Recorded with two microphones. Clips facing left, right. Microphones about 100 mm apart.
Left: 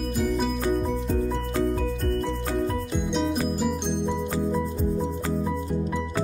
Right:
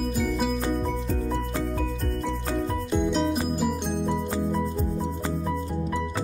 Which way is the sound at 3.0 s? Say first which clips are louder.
Even; centre (ahead or behind).